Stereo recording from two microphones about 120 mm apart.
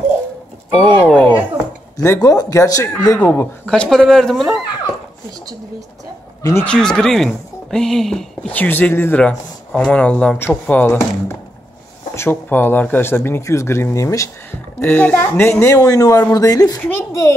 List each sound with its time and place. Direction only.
0.7 s speech: 10° left (ahead or behind)
2.0 s speech: 30° left (ahead or behind)
2.9 s speech: 10° left (ahead or behind)
6.6 s speech: 5° left (ahead or behind); by 14.3 s 25° left (ahead or behind)
14.8 s speech: 15° left (ahead or behind)